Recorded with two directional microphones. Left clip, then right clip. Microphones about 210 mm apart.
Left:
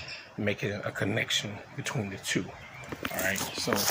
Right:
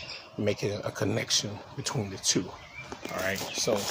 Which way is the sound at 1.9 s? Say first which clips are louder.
Right 3 dB; 10° right (ahead or behind).